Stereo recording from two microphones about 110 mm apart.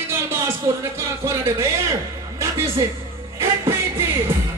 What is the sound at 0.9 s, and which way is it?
Speech, 25° right (ahead or behind).